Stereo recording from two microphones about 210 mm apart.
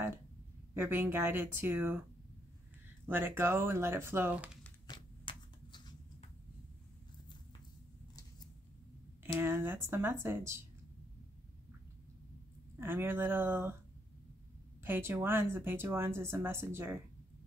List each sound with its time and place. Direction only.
0.7 s speech: 10° right (ahead or behind)
3.1 s speech: 10° right (ahead or behind)
4.8 s shuffling cards: 20° left (ahead or behind)
9.2 s speech: 10° right (ahead or behind)
12.7 s speech: 10° right (ahead or behind)
14.8 s speech: 10° right (ahead or behind)